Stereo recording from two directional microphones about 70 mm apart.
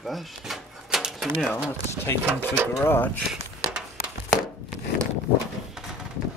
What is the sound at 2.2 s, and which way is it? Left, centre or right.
Speech, right.